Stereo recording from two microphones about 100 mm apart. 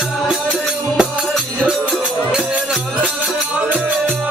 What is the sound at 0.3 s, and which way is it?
Music, 5° right (ahead or behind).